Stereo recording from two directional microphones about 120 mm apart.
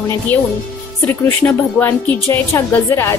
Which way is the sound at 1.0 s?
15° left (ahead or behind).